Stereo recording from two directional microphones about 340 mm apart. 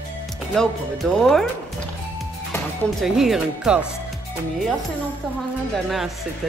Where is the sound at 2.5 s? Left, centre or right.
Centre.